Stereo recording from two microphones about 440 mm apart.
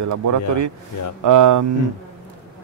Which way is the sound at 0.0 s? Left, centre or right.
Right.